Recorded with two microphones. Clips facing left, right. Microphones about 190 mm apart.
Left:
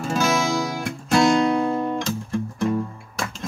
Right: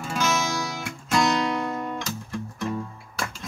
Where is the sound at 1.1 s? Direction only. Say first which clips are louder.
Left 6 dB; 30° left (ahead or behind).